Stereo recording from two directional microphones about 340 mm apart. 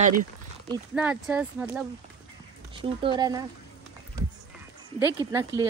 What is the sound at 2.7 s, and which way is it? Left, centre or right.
Speech, centre.